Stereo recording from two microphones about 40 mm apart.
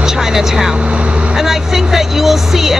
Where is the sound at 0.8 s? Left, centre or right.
Right.